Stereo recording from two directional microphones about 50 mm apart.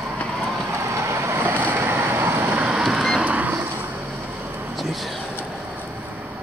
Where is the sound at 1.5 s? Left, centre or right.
Right.